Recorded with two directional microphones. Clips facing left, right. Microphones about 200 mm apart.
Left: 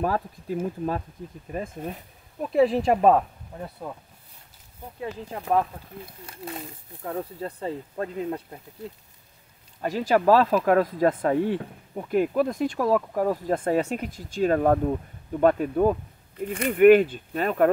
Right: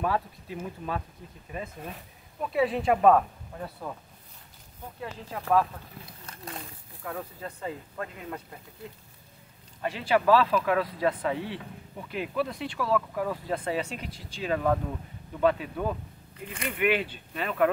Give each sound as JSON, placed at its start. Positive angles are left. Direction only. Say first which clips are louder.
{"t": 0.0, "sound": "speech", "louder": "left 3 dB", "side_deg": 40}
{"t": 5.4, "sound": "speech", "louder": "left 1 dB", "side_deg": 20}
{"t": 6.2, "sound": "speech", "louder": "left 4 dB", "side_deg": 5}
{"t": 7.0, "sound": "speech", "louder": "left 6 dB", "side_deg": 30}
{"t": 9.8, "sound": "speech", "louder": "left 3 dB", "side_deg": 40}